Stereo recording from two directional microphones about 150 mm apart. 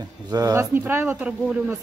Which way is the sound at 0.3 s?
25° right (ahead or behind).